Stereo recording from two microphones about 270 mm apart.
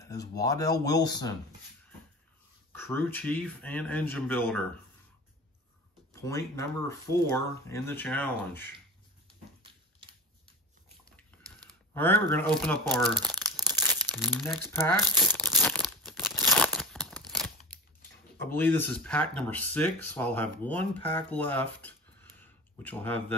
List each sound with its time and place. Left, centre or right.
0.0 s a sound: centre
0.4 s speech: centre
2.7 s speech: centre
6.2 s speech: centre
9.6 s a sound: centre
11.9 s speech: centre
13.2 s crumpling: centre
13.7 s crumpling: centre
14.1 s speech: centre
15.5 s crumpling: centre
18.4 s speech: centre
22.4 s a sound: centre